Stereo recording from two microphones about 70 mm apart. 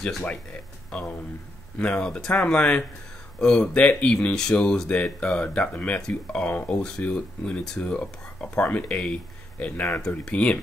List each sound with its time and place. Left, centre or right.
0.9 s speech: centre